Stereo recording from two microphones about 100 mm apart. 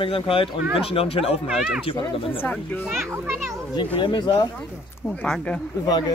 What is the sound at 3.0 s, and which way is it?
Speech, 25° right (ahead or behind).